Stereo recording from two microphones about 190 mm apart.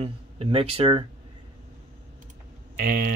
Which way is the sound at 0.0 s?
30° right (ahead or behind).